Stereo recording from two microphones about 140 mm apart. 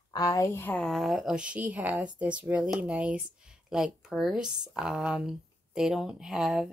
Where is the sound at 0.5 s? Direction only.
10° left (ahead or behind).